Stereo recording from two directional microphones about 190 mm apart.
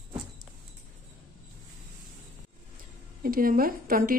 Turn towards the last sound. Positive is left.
turn(degrees=-50)  # may be behind; listen again after turning